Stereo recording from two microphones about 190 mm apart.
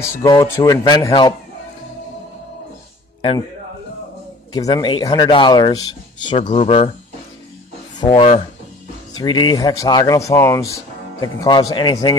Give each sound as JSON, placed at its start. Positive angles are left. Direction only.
{"t": 0.0, "sound": "speech", "side_deg": 15}
{"t": 3.2, "sound": "speech", "side_deg": 25}
{"t": 4.6, "sound": "speech", "side_deg": 20}
{"t": 8.0, "sound": "speech", "side_deg": 30}